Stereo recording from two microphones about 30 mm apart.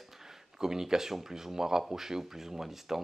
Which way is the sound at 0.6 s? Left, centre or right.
Centre.